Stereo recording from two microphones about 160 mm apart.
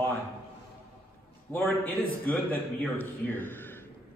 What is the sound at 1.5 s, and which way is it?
A man's voice, 10° left (ahead or behind).